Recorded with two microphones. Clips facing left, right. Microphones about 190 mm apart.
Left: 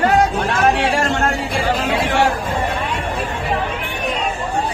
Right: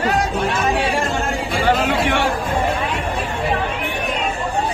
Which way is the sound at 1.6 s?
65° right (ahead or behind).